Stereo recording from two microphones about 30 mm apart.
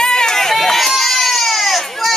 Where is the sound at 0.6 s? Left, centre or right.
Centre.